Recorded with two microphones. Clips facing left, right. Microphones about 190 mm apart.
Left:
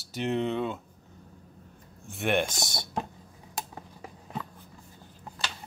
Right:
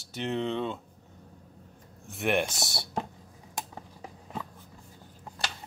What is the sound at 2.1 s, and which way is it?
Speech, centre (ahead or behind).